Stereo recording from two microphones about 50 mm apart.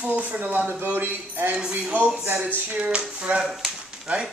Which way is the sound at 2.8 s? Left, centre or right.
Right.